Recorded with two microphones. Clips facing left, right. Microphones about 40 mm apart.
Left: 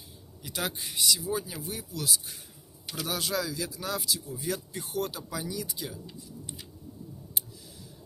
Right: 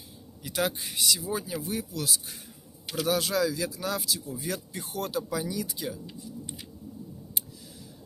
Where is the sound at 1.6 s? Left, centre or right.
Right.